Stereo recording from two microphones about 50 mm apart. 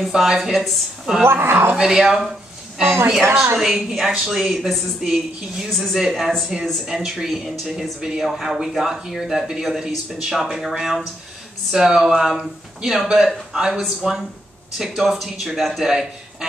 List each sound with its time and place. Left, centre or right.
0.0 s a woman's voice: centre
1.2 s speech: right
1.8 s speech: centre
3.5 s a woman's voice: centre
5.7 s a woman's voice: centre
5.9 s speech: centre
6.6 s a woman's voice: centre
7.0 s a woman's voice: centre
15.8 s a man's voice: centre